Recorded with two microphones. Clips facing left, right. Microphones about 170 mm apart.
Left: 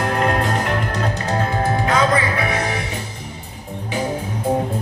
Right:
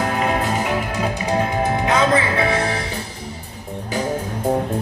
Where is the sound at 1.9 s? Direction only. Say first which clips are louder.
Right 1 dB; 25° right (ahead or behind).